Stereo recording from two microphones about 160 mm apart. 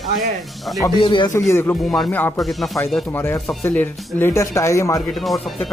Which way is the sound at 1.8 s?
Centre (ahead or behind).